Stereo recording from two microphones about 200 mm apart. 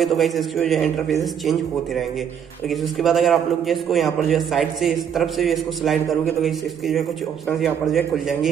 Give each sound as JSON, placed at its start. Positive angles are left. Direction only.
{"t": 0.0, "sound": "a man's voice", "side_deg": 0}